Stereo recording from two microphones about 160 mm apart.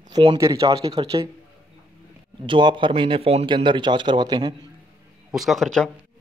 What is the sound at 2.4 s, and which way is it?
A man's voice, 30° right (ahead or behind).